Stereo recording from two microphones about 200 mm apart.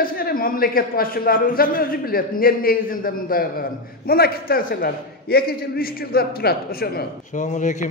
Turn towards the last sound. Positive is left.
turn(degrees=40)  # may be behind; listen again after turning